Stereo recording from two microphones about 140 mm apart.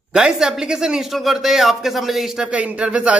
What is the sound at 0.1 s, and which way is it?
Speech, 5° right (ahead or behind).